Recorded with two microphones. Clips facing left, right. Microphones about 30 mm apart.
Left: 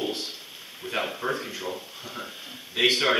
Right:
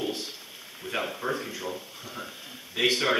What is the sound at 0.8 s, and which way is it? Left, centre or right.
Speech, centre.